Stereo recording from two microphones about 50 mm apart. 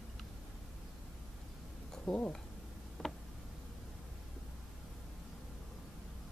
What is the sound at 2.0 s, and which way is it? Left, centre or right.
Speech, left.